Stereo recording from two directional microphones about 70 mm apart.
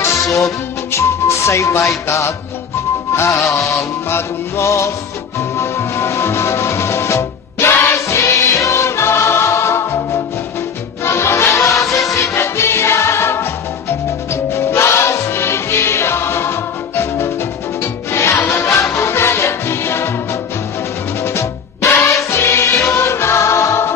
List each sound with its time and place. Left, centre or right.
0.0 s music: left
3.5 s music: centre
4.1 s music: left
21.2 s music: left